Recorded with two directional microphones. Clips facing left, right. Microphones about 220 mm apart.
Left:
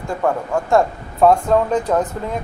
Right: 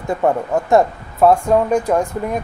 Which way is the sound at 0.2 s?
20° right (ahead or behind).